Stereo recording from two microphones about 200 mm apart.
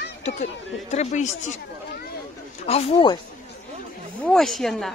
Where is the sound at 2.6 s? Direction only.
30° left (ahead or behind).